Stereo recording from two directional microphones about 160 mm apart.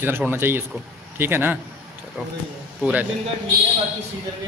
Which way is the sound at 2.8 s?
10° right (ahead or behind).